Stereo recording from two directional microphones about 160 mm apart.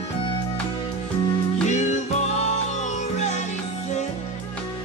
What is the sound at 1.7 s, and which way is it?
Music, 45° left (ahead or behind).